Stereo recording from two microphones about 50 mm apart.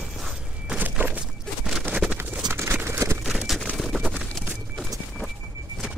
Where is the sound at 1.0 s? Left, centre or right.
Right.